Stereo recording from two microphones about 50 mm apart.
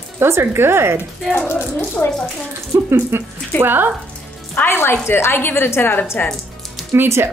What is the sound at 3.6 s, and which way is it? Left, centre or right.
Speech, right.